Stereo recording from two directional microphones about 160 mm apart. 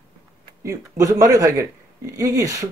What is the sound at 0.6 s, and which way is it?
Speech, 20° right (ahead or behind).